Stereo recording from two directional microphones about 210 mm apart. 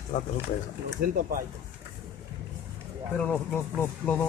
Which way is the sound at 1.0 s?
45° right (ahead or behind).